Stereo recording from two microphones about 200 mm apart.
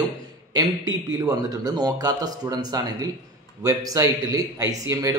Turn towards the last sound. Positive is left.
turn(degrees=-15)  # may be behind; listen again after turning